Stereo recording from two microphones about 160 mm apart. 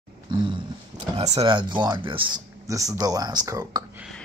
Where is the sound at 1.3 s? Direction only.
25° right (ahead or behind).